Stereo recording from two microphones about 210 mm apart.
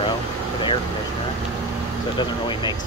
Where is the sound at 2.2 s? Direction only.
20° left (ahead or behind).